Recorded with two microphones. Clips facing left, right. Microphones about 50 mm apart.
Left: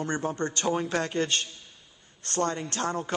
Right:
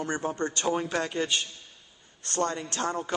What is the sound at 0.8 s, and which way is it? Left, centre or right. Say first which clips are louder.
Speech: left 1 dB; centre.